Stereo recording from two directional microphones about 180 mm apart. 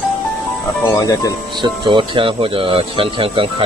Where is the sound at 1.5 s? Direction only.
25° right (ahead or behind).